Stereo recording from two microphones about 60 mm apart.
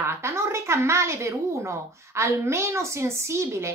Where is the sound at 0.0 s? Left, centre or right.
Right.